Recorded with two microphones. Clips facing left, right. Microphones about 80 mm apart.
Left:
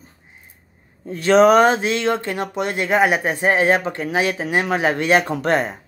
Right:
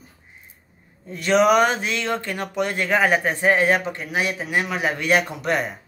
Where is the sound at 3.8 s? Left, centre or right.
Left.